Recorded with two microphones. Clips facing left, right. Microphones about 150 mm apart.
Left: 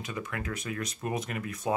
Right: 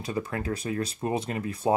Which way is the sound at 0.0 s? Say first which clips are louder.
Right 5 dB; 35° right (ahead or behind).